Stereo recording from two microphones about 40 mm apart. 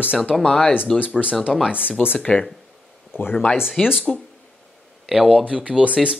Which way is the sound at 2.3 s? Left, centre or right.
Left.